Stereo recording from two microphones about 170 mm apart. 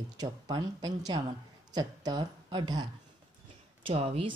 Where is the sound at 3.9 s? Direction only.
35° right (ahead or behind).